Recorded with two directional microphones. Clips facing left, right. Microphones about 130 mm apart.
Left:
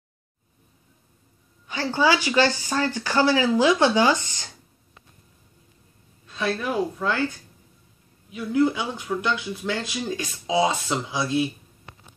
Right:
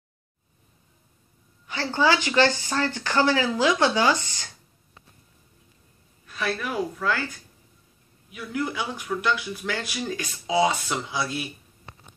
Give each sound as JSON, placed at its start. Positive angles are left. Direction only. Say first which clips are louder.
{"t": 1.7, "sound": "speech", "louder": "left 1 dB", "side_deg": 15}
{"t": 6.2, "sound": "speech", "louder": "left 3 dB", "side_deg": 25}